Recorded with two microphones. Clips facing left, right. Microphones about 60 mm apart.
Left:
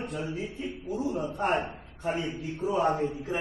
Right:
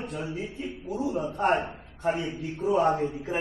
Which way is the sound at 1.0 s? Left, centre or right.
Right.